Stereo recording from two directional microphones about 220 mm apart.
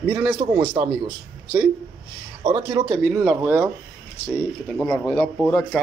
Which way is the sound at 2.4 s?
15° right (ahead or behind).